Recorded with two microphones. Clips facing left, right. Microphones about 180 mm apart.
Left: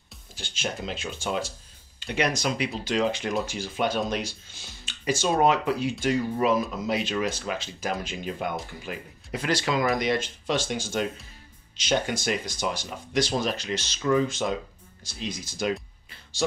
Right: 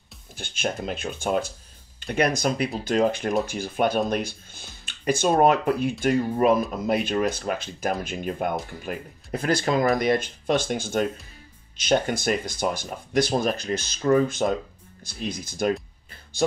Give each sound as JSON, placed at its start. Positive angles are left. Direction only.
{"t": 0.4, "sound": "speech", "side_deg": -55}
{"t": 12.1, "sound": "speech", "side_deg": -55}